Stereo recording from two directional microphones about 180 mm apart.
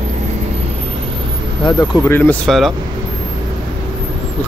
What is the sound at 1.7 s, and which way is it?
Speech, 15° left (ahead or behind).